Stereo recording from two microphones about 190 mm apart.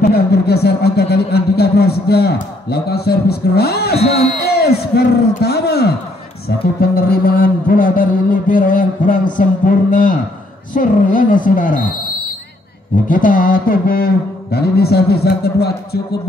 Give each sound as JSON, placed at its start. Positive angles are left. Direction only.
{"t": 0.0, "sound": "a man's voice", "side_deg": 55}
{"t": 4.5, "sound": "a sound", "side_deg": 55}
{"t": 13.1, "sound": "a man's voice", "side_deg": 45}